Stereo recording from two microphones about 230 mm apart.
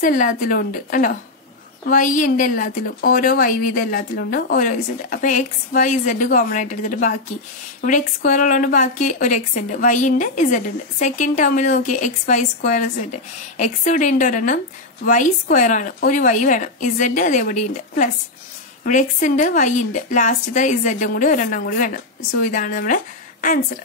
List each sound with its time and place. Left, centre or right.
0.0 s a woman's voice: left